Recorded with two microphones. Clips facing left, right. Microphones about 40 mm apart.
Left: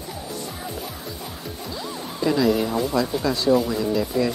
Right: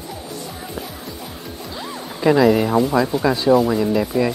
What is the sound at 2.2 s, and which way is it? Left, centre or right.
Music, right.